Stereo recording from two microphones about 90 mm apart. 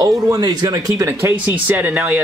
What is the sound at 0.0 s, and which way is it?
Speech, 45° right (ahead or behind).